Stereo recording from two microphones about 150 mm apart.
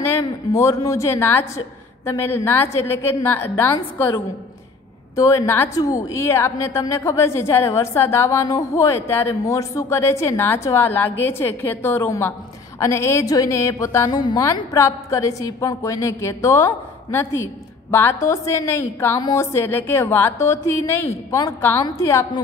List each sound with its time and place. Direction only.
0.0 s a woman's voice: 20° left (ahead or behind)